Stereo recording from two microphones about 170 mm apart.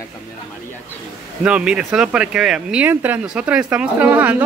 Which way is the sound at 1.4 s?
5° right (ahead or behind).